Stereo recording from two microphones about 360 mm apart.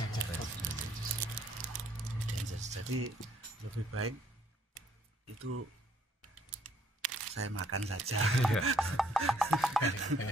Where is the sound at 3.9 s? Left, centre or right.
Right.